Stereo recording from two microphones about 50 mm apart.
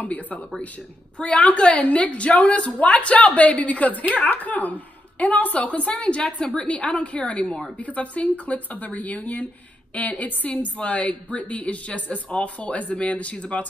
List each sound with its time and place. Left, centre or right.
0.0 s speech: left
1.1 s a woman's voice: left